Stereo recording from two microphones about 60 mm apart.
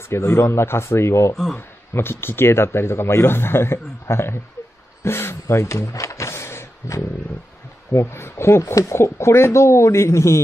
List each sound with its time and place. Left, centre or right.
0.1 s a man's voice: left
1.3 s speech: centre
2.0 s a man's voice: left